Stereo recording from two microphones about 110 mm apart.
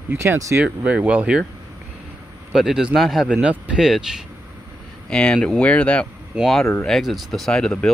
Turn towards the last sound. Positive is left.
turn(degrees=5)  # may be behind; listen again after turning